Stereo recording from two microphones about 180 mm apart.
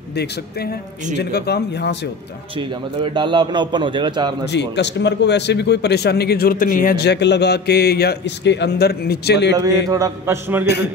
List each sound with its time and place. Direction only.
1.1 s speech: 65° left (ahead or behind)
3.0 s a man's voice: 25° right (ahead or behind)
4.5 s speech: 75° left (ahead or behind)
9.8 s mantra: 20° right (ahead or behind)